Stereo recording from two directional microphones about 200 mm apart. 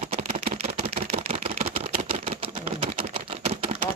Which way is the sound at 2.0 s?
30° right (ahead or behind).